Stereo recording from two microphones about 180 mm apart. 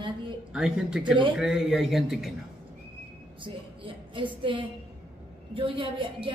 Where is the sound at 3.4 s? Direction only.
30° right (ahead or behind).